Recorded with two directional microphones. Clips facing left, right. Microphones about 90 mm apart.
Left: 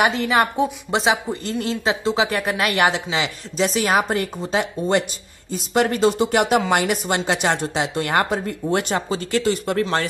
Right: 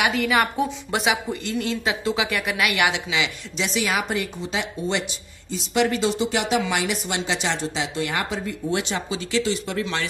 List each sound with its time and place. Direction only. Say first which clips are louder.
0.1 s a woman's voice: left 2 dB; 25° left (ahead or behind); by 10.0 s 45° left (ahead or behind)